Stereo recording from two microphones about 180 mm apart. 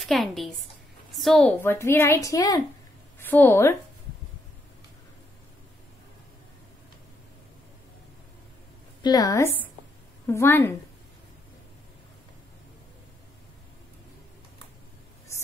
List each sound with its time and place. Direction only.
0.0 s a woman's voice: centre (ahead or behind)
1.6 s a woman's voice: 15° left (ahead or behind)
9.0 s a woman's voice: 20° left (ahead or behind)